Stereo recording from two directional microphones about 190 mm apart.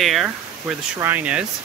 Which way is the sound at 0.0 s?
Centre (ahead or behind).